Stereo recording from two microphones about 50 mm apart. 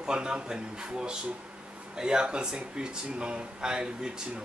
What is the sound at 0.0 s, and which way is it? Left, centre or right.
A man's voice, centre.